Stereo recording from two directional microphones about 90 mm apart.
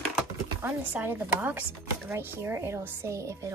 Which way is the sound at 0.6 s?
20° right (ahead or behind).